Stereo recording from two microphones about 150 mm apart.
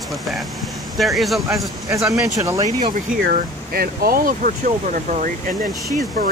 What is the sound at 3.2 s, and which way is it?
Speech, 85° right.